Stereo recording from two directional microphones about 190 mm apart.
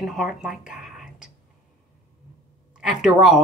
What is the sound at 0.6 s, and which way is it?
Whispering, 5° right (ahead or behind).